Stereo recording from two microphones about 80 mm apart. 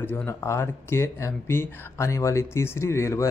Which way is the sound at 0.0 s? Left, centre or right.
Left.